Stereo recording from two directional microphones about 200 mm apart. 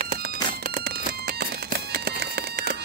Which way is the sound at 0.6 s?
50° right (ahead or behind).